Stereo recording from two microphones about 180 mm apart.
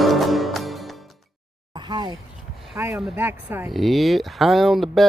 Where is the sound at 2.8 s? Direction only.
15° right (ahead or behind).